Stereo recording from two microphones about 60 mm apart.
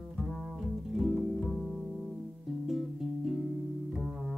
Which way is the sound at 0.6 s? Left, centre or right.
Centre.